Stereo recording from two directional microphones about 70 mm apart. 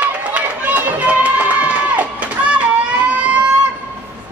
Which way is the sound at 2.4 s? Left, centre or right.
Centre.